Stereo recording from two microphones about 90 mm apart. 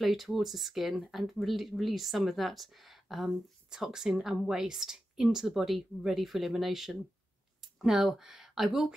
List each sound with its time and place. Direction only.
0.0 s speech: centre (ahead or behind)